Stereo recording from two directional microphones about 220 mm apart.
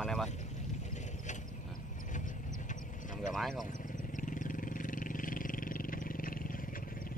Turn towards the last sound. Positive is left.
turn(degrees=40)  # may be behind; listen again after turning